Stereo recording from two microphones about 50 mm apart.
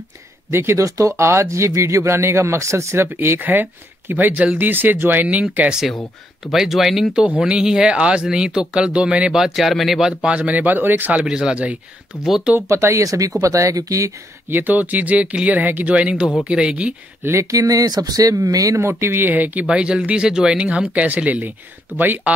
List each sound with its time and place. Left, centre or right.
0.5 s speech: right
0.7 s speech: right
3.1 s speech: right
5.2 s speech: right
6.4 s speech: centre
7.2 s speech: right
9.4 s speech: centre
10.3 s speech: right
11.1 s speech: centre
12.6 s speech: right
14.5 s speech: right
17.2 s speech: right
19.6 s speech: centre; by 22.3 s right